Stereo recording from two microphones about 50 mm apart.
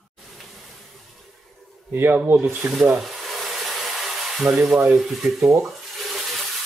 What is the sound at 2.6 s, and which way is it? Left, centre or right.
Speech, centre.